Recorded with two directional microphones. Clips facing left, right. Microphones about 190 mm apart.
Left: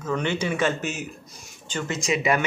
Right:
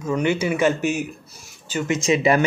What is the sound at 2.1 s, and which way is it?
Speech, 30° right (ahead or behind).